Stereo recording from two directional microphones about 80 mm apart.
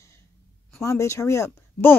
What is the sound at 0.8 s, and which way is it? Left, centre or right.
Speech, left.